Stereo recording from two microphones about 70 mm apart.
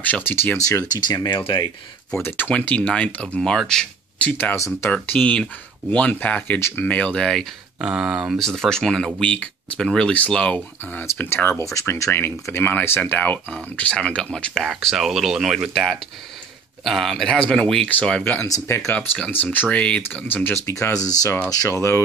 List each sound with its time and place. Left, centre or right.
0.0 s speech: left
0.9 s speech: left
2.2 s speech: left; by 3.8 s centre
4.2 s speech: left
4.6 s speech: left
4.9 s speech: centre
7.8 s speech: centre
8.4 s speech: centre
11.0 s speech: left
11.6 s speech: left; by 20.4 s centre
20.4 s speech: left
21.6 s speech: left